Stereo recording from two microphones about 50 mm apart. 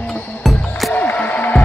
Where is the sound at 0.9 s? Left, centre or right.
Left.